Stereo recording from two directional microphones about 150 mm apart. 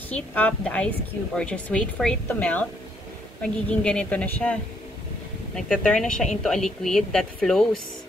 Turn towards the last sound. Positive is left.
turn(degrees=5)  # may be behind; listen again after turning